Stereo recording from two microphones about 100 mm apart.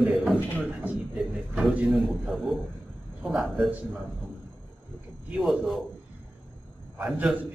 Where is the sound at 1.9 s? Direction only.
Centre (ahead or behind).